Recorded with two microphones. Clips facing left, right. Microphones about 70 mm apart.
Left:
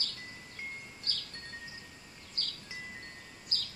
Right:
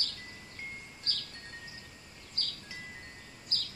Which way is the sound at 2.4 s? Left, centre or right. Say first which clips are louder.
Right 1 dB; centre.